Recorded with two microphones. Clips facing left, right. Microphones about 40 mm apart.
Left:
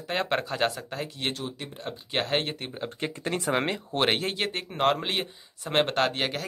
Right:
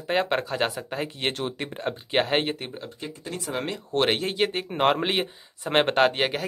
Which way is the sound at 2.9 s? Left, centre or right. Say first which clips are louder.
Left 5 dB; left.